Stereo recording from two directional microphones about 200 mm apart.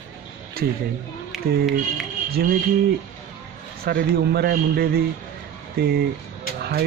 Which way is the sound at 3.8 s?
55° right (ahead or behind).